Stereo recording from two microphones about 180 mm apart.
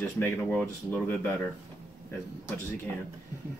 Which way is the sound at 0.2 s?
5° left (ahead or behind).